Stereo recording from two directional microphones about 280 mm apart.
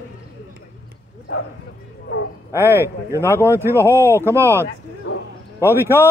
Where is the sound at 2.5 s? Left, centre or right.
Centre.